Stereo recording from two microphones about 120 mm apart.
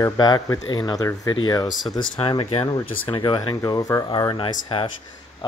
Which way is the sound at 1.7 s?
Centre (ahead or behind).